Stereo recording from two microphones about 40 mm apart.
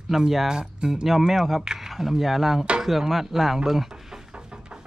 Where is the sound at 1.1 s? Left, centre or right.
Centre.